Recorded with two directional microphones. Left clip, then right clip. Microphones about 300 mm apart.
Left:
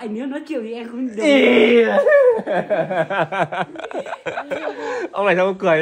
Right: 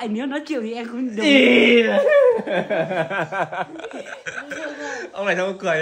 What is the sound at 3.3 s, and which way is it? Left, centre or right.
Speech, left.